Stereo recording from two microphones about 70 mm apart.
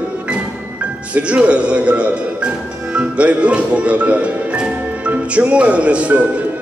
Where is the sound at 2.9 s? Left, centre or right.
Centre.